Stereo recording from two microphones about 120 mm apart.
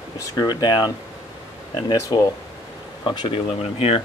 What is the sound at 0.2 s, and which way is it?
Speech, 35° left (ahead or behind).